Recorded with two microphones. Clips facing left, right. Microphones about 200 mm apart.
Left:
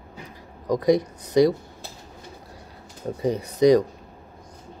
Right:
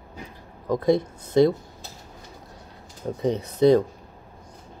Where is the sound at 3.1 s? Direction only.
10° left (ahead or behind).